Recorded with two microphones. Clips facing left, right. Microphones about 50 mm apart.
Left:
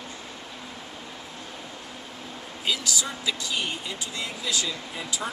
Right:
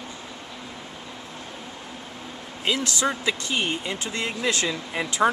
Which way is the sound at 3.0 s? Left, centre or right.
Right.